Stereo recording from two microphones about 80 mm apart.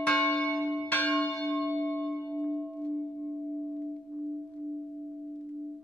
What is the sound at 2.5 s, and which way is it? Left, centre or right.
Singing bowl, centre.